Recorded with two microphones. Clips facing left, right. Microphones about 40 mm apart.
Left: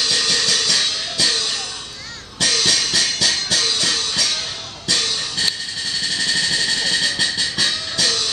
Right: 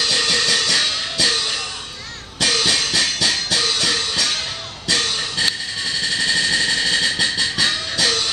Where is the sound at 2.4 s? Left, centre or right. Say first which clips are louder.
Right 1 dB; centre.